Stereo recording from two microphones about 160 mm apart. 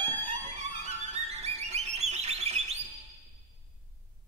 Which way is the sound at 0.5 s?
40° right (ahead or behind).